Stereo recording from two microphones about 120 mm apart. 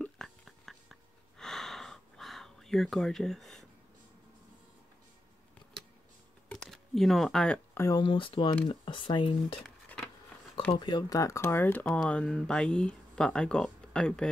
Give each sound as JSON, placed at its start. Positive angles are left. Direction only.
{"t": 0.0, "sound": "a sound", "side_deg": 5}
{"t": 6.5, "sound": "speech", "side_deg": 5}
{"t": 7.7, "sound": "speech", "side_deg": 25}
{"t": 8.0, "sound": "speech", "side_deg": 45}
{"t": 9.6, "sound": "a sound", "side_deg": 5}
{"t": 10.7, "sound": "speech", "side_deg": 40}
{"t": 11.8, "sound": "speech", "side_deg": 5}